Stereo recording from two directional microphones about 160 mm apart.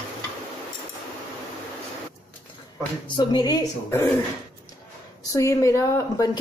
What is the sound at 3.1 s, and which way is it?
Speech, 25° left (ahead or behind).